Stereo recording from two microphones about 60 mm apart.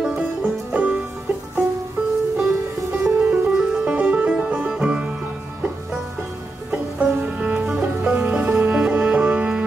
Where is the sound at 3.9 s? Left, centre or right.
Right.